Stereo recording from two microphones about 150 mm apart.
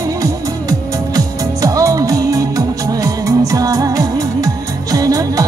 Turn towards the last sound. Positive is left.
turn(degrees=-25)  # may be behind; listen again after turning